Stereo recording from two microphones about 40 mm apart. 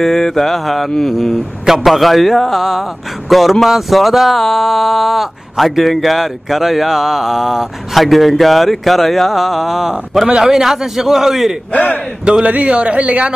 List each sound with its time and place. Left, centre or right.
0.0 s mantra: centre
1.9 s a sound: centre
10.4 s a man's voice: centre
11.7 s a man's voice: left
12.4 s speech: right